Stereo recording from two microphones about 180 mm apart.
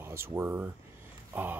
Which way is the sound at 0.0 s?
15° right (ahead or behind).